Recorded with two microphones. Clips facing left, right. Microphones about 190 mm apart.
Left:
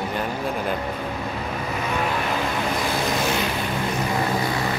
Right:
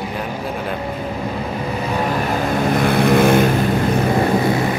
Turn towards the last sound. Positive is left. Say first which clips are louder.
# right 10 dB
turn(degrees=-55)  # may be behind; listen again after turning